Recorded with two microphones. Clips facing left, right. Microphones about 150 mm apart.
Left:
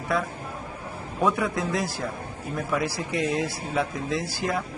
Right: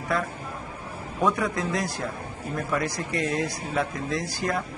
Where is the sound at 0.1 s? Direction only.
Centre (ahead or behind).